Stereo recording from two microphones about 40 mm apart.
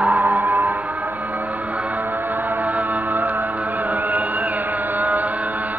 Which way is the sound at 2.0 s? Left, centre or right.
Right.